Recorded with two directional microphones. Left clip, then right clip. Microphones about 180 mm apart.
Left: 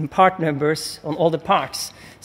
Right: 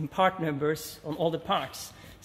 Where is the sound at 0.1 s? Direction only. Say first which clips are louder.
Left 10 dB; 40° left (ahead or behind).